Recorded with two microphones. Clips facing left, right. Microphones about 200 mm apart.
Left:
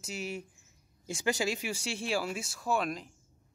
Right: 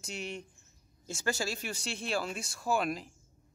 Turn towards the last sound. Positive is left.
turn(degrees=0)  # may be behind; listen again after turning